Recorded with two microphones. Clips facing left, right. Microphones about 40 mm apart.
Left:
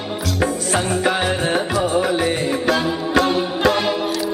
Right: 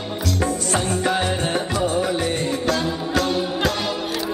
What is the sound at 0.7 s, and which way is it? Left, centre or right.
Music, centre.